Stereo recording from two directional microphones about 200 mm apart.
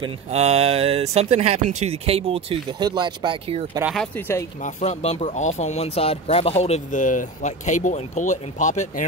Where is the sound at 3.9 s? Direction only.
5° left (ahead or behind).